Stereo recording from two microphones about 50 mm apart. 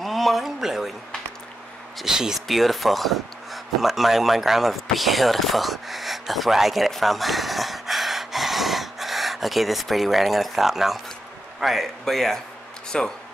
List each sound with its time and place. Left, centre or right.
0.0 s a sound: centre
2.0 s a man's voice: centre
12.9 s speech: centre